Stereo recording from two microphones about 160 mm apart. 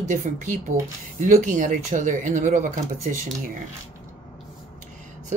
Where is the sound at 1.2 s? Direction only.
55° right (ahead or behind).